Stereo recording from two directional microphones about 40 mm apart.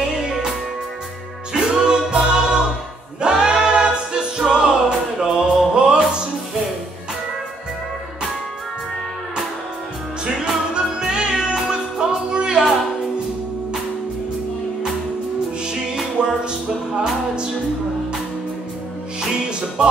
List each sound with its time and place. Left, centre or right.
0.2 s music: centre
1.5 s music: centre
10.2 s music: centre
15.6 s music: right